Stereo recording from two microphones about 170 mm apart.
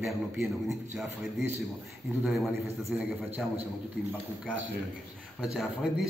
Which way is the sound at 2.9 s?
5° right (ahead or behind).